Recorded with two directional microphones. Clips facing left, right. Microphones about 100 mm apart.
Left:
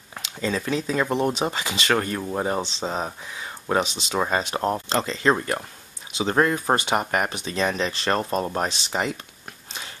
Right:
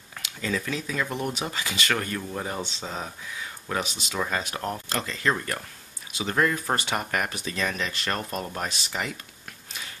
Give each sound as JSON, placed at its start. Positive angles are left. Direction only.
{"t": 0.2, "sound": "speech", "side_deg": 30}